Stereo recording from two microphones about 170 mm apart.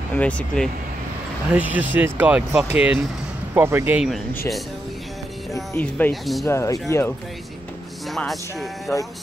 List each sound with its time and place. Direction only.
0.1 s speech: 5° left (ahead or behind)
1.5 s speech: 10° right (ahead or behind)
5.5 s speech: 15° left (ahead or behind)
8.1 s speech: centre (ahead or behind)